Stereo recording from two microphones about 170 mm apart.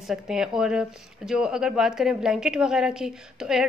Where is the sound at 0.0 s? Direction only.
5° right (ahead or behind).